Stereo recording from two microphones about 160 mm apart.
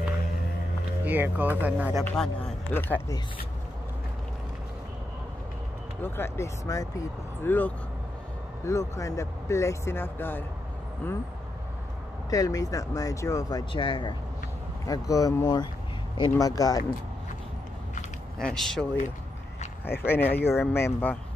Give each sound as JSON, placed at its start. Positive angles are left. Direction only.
{"t": 1.0, "sound": "speech", "side_deg": -10}
{"t": 2.0, "sound": "speech", "side_deg": 5}
{"t": 6.0, "sound": "speech", "side_deg": 15}
{"t": 12.3, "sound": "speech", "side_deg": 20}
{"t": 18.4, "sound": "speech", "side_deg": 5}
{"t": 20.0, "sound": "speech", "side_deg": 15}